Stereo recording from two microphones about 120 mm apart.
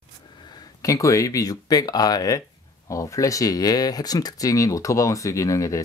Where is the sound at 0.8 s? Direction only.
25° left (ahead or behind).